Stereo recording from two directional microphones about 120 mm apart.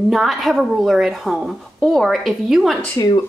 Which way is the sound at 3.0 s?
30° left (ahead or behind).